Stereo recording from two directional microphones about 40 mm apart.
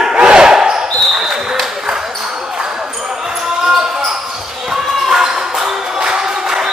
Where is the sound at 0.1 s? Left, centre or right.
Right.